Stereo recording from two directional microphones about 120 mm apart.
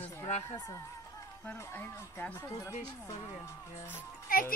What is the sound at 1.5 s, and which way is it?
Speech, 15° left (ahead or behind).